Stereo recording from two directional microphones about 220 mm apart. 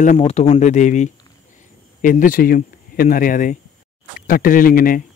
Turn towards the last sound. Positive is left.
turn(degrees=40)  # may be behind; listen again after turning